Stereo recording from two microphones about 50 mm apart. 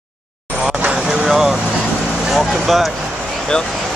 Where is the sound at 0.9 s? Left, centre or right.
Centre.